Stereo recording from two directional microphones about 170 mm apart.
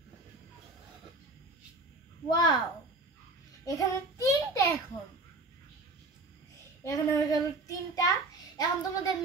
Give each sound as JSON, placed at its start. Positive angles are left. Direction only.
{"t": 2.2, "sound": "child singing", "side_deg": 25}
{"t": 3.6, "sound": "child singing", "side_deg": 20}
{"t": 6.8, "sound": "child singing", "side_deg": 20}